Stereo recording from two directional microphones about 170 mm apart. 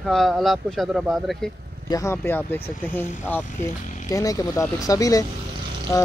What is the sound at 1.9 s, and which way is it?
Speech, 15° left (ahead or behind).